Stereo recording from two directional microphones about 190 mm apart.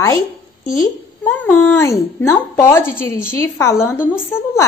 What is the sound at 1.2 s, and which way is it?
A woman's voice, 10° left (ahead or behind).